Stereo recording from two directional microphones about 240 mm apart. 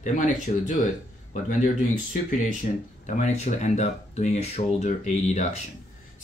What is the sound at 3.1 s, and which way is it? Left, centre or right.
Speech, left.